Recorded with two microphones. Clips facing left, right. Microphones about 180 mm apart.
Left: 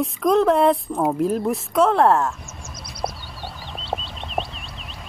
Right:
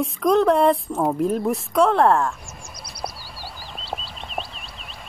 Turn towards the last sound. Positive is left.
turn(degrees=0)  # may be behind; listen again after turning